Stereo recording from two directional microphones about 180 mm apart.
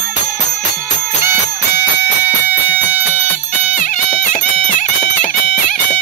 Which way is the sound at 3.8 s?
55° left (ahead or behind).